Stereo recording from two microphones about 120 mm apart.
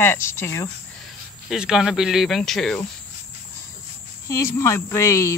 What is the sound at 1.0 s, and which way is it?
Speech, centre (ahead or behind).